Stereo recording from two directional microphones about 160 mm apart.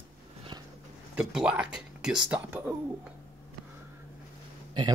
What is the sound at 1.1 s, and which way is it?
Speech, 5° right (ahead or behind).